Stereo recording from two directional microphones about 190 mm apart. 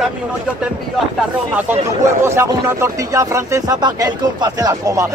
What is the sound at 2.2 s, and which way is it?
Speech, 15° right (ahead or behind).